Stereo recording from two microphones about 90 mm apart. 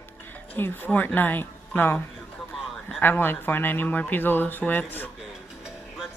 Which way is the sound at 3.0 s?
25° left (ahead or behind).